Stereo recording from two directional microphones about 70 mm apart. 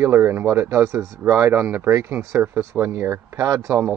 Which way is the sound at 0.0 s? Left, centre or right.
Right.